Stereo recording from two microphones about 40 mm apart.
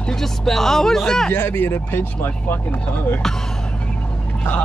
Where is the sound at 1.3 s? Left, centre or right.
Left.